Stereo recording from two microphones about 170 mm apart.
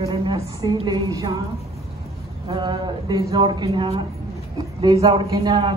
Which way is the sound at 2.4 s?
25° right (ahead or behind).